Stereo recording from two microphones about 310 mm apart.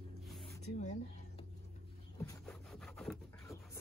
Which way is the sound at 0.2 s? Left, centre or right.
Centre.